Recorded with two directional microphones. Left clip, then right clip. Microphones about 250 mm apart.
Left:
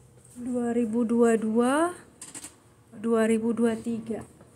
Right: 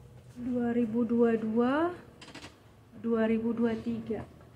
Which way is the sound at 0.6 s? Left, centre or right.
Left.